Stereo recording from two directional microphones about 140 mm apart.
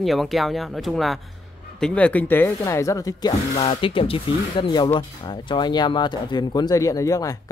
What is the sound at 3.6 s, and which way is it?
Speech, 40° left (ahead or behind).